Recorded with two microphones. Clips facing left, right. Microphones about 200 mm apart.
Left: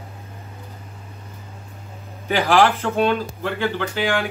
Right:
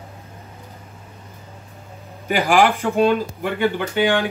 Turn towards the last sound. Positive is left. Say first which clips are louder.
# right 3 dB
turn(degrees=-20)  # may be behind; listen again after turning